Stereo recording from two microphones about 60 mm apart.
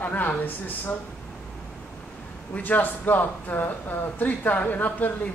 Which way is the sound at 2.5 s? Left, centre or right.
Left.